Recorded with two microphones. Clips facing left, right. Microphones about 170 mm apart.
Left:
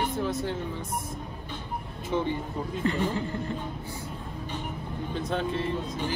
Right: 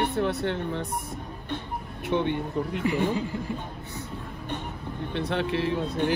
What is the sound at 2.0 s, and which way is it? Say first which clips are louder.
Speech: right 3 dB; 70° right (ahead or behind).